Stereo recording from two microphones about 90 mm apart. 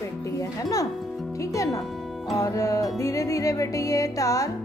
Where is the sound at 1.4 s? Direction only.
35° left (ahead or behind).